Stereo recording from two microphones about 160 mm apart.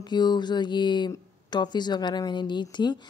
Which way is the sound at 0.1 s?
25° left (ahead or behind).